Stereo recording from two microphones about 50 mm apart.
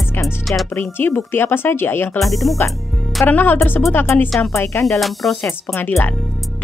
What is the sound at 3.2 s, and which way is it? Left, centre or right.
Speech, left.